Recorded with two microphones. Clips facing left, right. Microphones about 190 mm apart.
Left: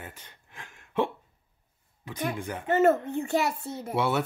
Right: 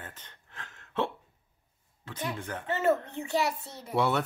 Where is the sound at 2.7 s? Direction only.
50° left (ahead or behind).